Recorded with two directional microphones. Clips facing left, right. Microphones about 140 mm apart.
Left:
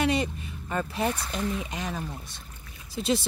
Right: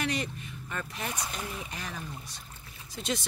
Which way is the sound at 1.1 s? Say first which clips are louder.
Left 7 dB; 10° right (ahead or behind).